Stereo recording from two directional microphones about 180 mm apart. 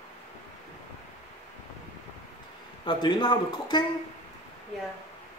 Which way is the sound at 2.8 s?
25° left (ahead or behind).